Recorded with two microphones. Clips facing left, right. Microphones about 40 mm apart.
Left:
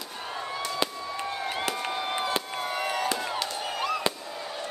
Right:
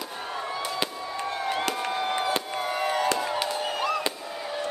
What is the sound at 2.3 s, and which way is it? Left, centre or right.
Chop, centre.